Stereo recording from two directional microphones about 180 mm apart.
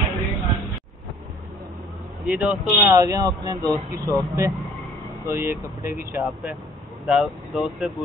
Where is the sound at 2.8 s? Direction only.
15° right (ahead or behind).